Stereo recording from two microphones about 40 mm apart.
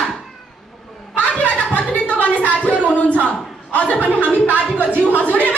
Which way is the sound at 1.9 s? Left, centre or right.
Left.